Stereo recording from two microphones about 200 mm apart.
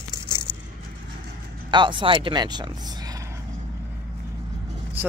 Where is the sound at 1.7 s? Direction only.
25° right (ahead or behind).